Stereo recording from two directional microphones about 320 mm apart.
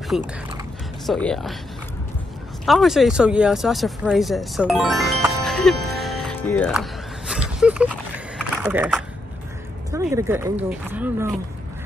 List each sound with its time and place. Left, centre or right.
0.1 s speech: centre
2.6 s speech: centre
6.5 s a sound: centre
9.8 s speech: centre